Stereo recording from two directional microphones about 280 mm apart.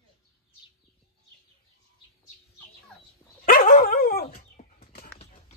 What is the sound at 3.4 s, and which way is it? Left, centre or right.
Dog, left.